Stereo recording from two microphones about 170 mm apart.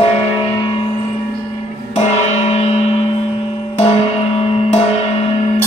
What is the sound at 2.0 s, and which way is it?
Music, 35° left (ahead or behind).